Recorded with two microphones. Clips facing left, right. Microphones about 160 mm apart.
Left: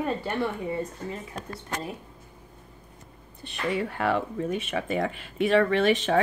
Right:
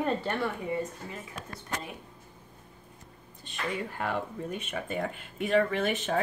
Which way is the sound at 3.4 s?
70° left (ahead or behind).